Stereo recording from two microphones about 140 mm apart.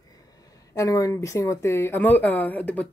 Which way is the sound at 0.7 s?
25° left (ahead or behind).